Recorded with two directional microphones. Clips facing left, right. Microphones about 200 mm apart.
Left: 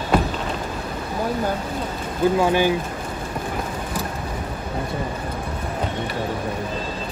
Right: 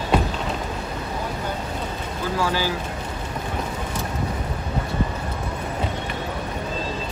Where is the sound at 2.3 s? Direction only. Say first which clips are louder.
Left 4 dB; 20° left (ahead or behind).